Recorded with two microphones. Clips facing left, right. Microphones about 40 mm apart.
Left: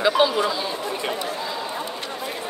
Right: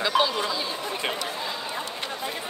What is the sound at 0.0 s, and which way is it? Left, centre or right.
Chatter, centre.